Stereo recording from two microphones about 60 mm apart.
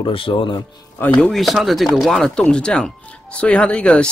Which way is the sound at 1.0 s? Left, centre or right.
Left.